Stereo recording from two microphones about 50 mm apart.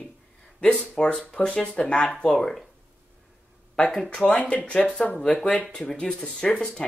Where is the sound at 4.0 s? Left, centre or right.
Centre.